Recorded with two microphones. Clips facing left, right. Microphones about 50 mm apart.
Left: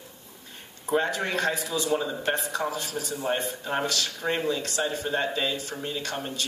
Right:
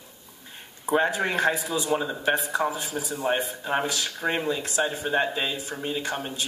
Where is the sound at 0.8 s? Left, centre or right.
Centre.